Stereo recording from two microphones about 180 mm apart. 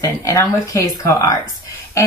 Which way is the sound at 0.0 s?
15° left (ahead or behind).